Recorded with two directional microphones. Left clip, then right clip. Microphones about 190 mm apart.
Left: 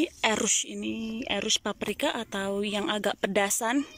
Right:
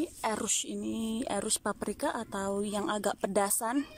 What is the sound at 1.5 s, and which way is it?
Speech, 15° left (ahead or behind).